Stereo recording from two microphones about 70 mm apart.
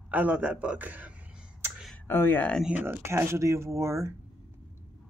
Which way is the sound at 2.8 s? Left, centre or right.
Right.